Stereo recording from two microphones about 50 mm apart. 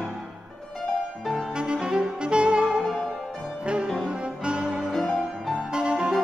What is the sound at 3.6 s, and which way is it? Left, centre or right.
Music, right.